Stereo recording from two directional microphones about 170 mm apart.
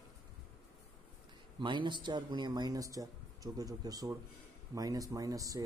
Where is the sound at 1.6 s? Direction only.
25° right (ahead or behind).